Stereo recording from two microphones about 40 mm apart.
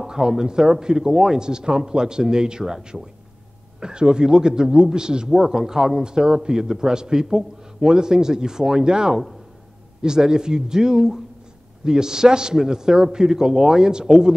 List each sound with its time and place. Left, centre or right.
0.0 s a man's voice: centre